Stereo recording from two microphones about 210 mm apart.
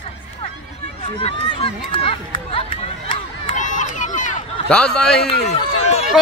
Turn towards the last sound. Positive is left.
turn(degrees=30)  # may be behind; listen again after turning